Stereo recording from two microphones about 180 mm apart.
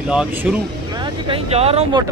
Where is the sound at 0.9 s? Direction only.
25° right (ahead or behind).